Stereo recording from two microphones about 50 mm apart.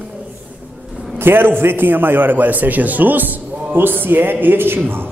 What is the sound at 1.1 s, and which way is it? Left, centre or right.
A man's voice, right.